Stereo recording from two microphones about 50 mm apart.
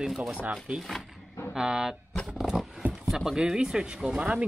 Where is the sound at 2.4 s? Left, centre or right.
Centre.